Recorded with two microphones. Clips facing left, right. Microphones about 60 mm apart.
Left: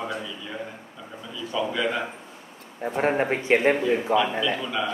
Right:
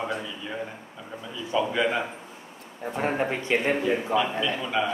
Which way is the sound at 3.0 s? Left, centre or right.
Left.